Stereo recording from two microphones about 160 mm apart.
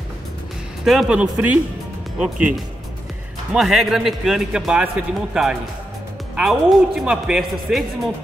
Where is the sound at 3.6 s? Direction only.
Centre (ahead or behind).